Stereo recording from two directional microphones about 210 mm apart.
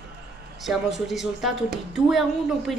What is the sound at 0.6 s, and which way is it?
A woman's voice, centre (ahead or behind).